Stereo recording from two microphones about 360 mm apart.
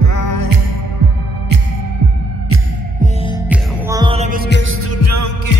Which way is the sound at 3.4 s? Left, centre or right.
Centre.